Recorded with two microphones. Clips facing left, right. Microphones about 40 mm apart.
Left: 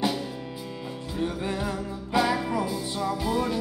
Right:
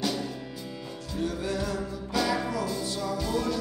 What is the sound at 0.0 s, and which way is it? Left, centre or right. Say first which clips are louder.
Music: left 3 dB; centre.